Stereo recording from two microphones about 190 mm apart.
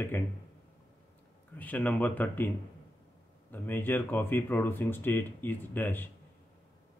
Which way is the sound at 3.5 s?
10° left (ahead or behind).